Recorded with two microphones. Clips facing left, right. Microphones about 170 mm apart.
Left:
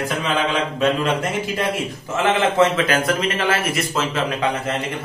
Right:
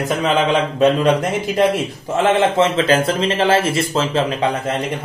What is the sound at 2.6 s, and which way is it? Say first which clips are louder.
A man's voice: right 2 dB; 30° right (ahead or behind).